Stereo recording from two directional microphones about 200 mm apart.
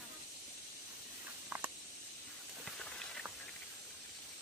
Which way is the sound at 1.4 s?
10° right (ahead or behind).